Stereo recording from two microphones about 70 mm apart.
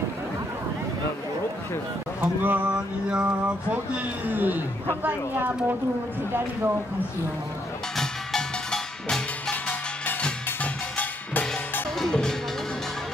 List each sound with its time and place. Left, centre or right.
2.2 s speech: right
7.9 s music: centre
9.7 s music: centre
12.0 s music: centre